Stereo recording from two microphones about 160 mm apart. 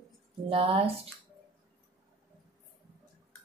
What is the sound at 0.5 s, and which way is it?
Speech, 35° right (ahead or behind).